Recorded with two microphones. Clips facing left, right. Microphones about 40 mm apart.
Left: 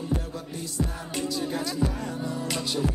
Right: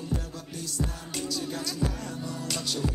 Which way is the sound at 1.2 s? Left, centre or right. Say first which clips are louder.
Left 4 dB; left.